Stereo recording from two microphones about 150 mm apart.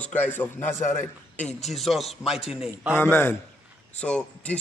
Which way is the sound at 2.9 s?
15° left (ahead or behind).